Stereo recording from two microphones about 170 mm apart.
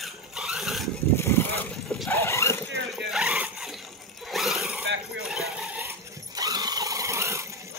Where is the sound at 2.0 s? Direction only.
15° left (ahead or behind).